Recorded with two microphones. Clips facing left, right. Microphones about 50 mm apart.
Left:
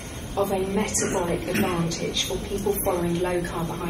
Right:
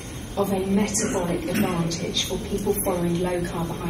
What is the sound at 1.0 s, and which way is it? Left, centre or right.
Speech, left.